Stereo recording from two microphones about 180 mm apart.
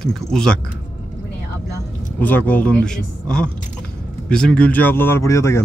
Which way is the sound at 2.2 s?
10° left (ahead or behind).